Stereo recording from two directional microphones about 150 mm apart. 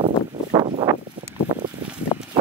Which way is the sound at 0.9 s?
15° right (ahead or behind).